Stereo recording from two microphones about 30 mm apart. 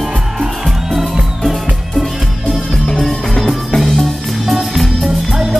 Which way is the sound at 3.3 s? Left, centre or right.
Centre.